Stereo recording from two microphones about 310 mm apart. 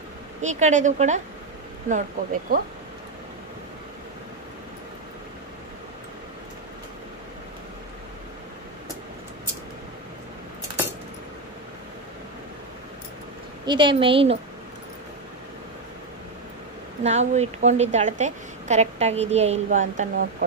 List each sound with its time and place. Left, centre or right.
0.4 s a woman's voice: right
2.5 s a woman's voice: right
13.7 s a woman's voice: centre
17.0 s a woman's voice: right